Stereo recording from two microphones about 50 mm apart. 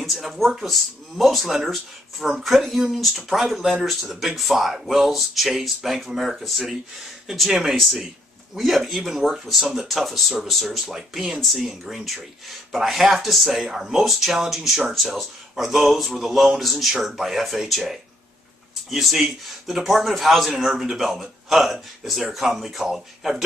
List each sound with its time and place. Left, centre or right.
0.0 s speech: centre